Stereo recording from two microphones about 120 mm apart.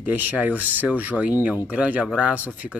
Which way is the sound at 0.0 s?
15° right (ahead or behind).